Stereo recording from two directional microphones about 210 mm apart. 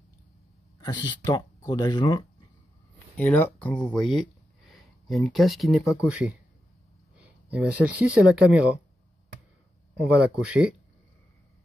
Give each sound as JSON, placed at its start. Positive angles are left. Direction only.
{"t": 0.7, "sound": "a sound", "side_deg": 20}
{"t": 1.1, "sound": "speech", "side_deg": 20}
{"t": 3.2, "sound": "speech", "side_deg": 5}
{"t": 7.5, "sound": "speech", "side_deg": -5}
{"t": 10.0, "sound": "speech", "side_deg": -5}